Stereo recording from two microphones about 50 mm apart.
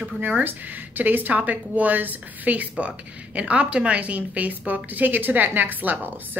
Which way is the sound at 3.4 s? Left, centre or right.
Right.